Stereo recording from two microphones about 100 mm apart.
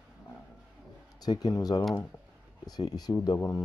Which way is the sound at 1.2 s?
40° left (ahead or behind).